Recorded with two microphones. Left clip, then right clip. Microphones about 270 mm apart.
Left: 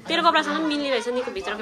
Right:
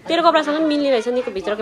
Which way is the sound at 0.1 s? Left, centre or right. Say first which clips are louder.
Right 4 dB; centre.